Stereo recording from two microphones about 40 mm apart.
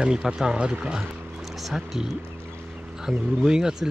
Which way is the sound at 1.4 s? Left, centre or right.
Centre.